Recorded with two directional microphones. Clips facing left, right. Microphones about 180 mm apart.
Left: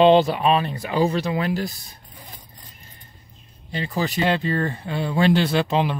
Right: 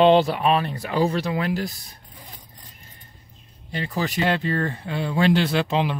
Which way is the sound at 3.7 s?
25° left (ahead or behind).